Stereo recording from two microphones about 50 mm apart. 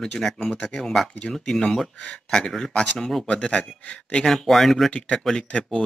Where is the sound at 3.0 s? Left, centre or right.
Centre.